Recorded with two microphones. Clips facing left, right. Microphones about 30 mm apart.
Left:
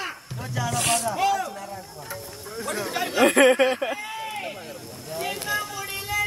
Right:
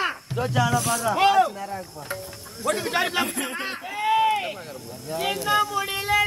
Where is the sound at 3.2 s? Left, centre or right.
Left.